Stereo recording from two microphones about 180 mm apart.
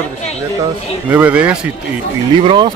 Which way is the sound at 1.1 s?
5° right (ahead or behind).